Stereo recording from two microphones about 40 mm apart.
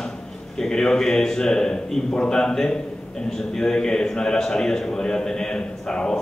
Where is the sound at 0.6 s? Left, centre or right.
Centre.